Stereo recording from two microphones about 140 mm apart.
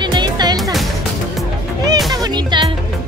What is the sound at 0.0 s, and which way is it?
Music, 30° right (ahead or behind).